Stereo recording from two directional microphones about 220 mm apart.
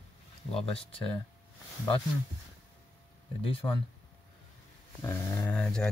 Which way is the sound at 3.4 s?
25° left (ahead or behind).